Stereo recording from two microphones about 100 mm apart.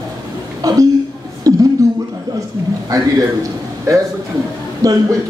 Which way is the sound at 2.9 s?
35° right (ahead or behind).